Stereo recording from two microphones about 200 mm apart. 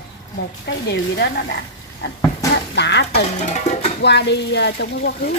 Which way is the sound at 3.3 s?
35° left (ahead or behind).